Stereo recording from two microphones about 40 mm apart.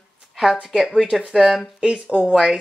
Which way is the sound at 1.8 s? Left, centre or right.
Right.